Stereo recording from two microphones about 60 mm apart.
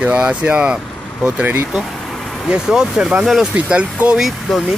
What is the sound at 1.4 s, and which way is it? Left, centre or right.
Speech, right.